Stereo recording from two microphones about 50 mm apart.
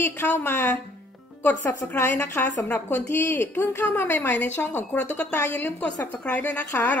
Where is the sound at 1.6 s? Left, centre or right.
Left.